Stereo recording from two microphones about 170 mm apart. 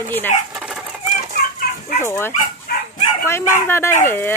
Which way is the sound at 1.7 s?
65° left (ahead or behind).